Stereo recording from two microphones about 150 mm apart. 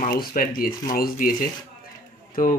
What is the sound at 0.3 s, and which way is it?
Speech, 70° left (ahead or behind).